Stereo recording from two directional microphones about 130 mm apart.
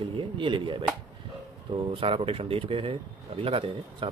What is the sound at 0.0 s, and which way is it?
Chopping, 40° right (ahead or behind).